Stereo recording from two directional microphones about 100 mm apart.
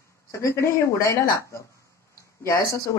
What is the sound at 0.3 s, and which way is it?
Speech, 30° left (ahead or behind).